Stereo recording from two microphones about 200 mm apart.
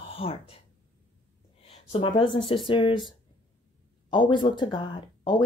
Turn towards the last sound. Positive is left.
turn(degrees=25)  # may be behind; listen again after turning